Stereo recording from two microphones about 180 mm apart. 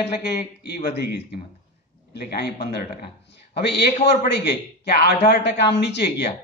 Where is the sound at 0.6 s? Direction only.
60° left (ahead or behind).